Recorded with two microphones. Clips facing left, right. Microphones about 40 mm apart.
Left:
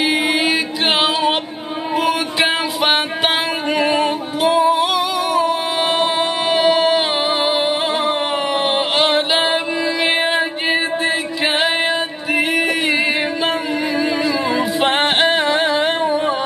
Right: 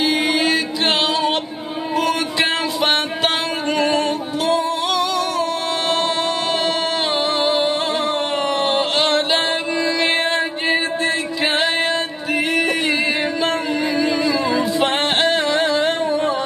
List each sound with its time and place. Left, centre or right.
0.0 s mantra: centre
2.0 s music: centre
15.0 s a sound: left